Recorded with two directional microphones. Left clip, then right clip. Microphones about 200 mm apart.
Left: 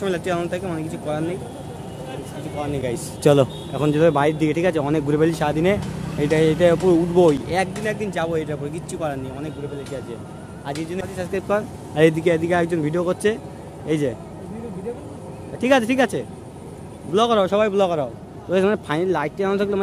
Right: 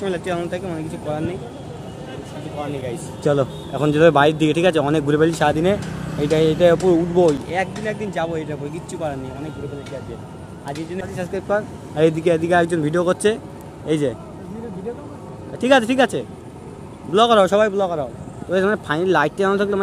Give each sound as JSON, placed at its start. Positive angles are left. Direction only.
{"t": 0.0, "sound": "speech", "side_deg": 5}
{"t": 3.3, "sound": "a man's voice", "side_deg": 25}
{"t": 3.7, "sound": "speech", "side_deg": 0}
{"t": 11.3, "sound": "speech", "side_deg": 15}
{"t": 15.6, "sound": "speech", "side_deg": 0}
{"t": 17.7, "sound": "a man's voice", "side_deg": 20}
{"t": 18.5, "sound": "speech", "side_deg": 5}